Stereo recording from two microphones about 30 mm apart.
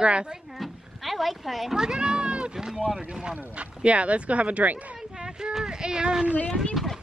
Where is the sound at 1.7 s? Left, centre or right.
Right.